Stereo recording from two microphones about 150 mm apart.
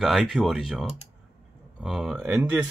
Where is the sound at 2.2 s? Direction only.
15° right (ahead or behind).